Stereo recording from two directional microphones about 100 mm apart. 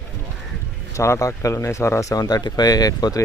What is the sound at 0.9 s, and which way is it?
Speech, 30° left (ahead or behind).